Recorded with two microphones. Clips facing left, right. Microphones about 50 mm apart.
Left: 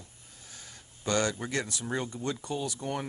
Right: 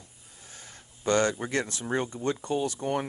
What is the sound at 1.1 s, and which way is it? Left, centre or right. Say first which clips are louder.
Speech: right 4 dB; right.